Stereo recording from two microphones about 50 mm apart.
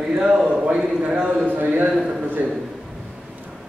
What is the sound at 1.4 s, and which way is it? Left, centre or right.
Speech, right.